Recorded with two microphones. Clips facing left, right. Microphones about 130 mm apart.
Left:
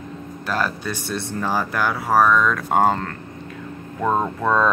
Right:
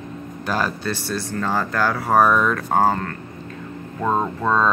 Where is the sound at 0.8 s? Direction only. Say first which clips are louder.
Right 1 dB; 15° left (ahead or behind).